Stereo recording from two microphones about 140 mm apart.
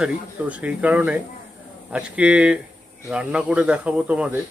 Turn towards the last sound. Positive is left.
turn(degrees=-10)  # may be behind; listen again after turning